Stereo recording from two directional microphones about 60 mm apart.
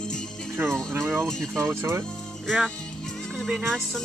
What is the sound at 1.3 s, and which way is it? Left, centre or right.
Speech, centre.